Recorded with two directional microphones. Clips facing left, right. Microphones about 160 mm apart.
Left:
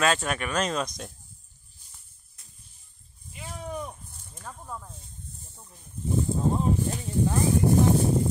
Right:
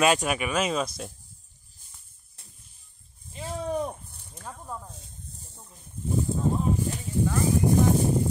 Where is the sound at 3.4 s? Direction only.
35° right (ahead or behind).